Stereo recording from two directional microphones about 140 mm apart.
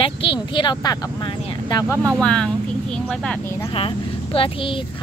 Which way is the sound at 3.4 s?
20° left (ahead or behind).